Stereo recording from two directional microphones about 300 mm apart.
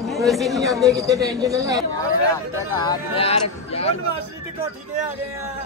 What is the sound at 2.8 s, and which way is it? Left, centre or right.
Speech, centre.